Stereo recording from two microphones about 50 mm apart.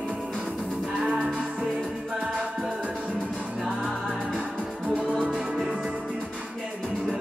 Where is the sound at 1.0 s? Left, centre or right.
Right.